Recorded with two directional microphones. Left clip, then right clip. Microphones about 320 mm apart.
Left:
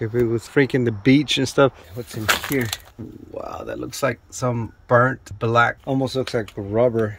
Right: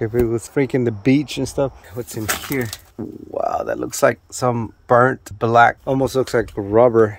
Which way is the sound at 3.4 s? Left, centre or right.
Centre.